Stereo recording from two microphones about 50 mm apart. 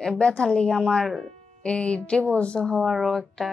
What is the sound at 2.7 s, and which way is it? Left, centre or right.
Speech, centre.